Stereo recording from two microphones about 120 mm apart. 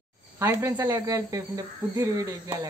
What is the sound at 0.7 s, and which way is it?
Speech, 30° right (ahead or behind).